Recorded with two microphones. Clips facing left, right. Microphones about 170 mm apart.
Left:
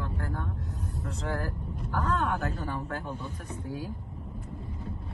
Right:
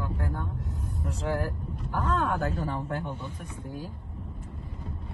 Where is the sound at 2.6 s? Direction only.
25° right (ahead or behind).